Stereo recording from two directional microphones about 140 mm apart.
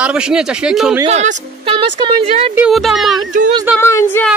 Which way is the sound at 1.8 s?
35° right (ahead or behind).